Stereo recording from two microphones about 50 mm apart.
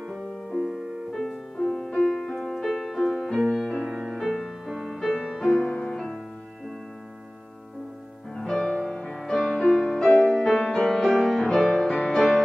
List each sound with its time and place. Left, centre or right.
0.1 s music: centre
0.7 s music: centre
1.1 s music: centre
5.0 s music: centre
8.4 s music: centre